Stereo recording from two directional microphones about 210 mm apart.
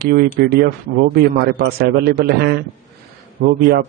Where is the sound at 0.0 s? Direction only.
50° right (ahead or behind).